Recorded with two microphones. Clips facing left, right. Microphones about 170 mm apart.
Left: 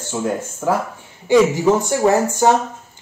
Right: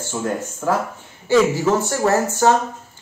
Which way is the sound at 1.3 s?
15° left (ahead or behind).